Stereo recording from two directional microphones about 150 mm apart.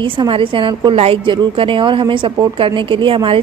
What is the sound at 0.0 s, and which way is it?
A woman's voice, 35° right (ahead or behind).